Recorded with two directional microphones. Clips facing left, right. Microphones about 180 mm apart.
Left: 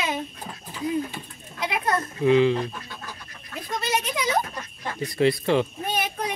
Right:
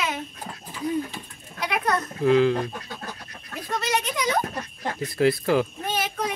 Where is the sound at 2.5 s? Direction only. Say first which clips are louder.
Even; 45° right (ahead or behind).